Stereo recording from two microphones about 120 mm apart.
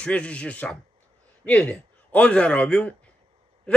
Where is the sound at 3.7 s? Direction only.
10° left (ahead or behind).